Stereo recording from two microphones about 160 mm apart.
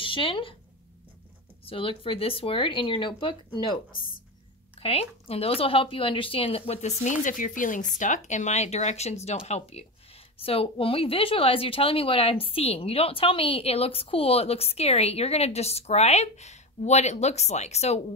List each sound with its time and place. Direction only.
0.0 s speech: 30° left (ahead or behind)
1.7 s a woman's voice: 35° left (ahead or behind)
4.8 s a woman's voice: 35° left (ahead or behind)